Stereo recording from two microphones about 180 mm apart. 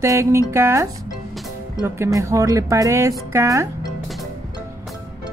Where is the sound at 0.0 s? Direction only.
15° right (ahead or behind).